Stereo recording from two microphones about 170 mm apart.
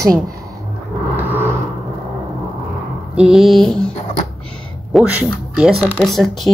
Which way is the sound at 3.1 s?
5° right (ahead or behind).